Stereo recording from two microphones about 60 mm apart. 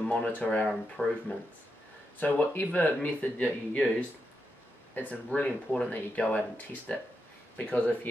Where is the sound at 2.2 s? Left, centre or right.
Left.